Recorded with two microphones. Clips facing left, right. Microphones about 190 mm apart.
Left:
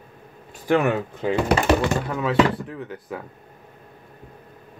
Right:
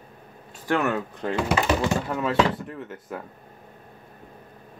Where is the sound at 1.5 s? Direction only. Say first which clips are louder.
Left 3 dB; 65° left (ahead or behind).